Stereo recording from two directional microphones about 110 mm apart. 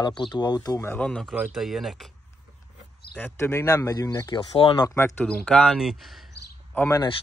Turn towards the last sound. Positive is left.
turn(degrees=25)  # may be behind; listen again after turning